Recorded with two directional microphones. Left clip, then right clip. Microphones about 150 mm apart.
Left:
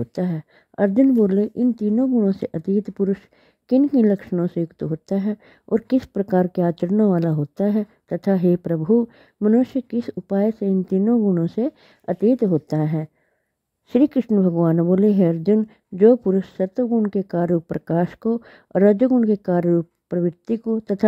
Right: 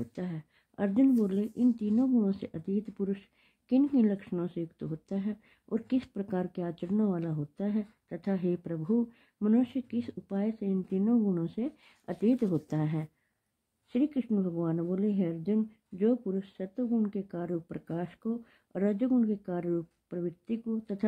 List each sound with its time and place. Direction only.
0.0 s a woman's voice: 55° left (ahead or behind)
11.1 s speech: 40° left (ahead or behind)
11.4 s a woman's voice: 60° left (ahead or behind)
12.1 s a woman's voice: 45° left (ahead or behind)
13.9 s a woman's voice: 75° left (ahead or behind)